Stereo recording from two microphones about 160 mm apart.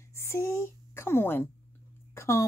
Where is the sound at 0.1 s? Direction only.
15° left (ahead or behind).